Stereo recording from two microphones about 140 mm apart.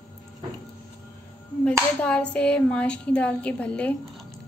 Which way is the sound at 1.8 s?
10° left (ahead or behind).